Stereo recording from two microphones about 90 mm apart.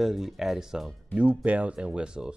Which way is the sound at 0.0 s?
Centre (ahead or behind).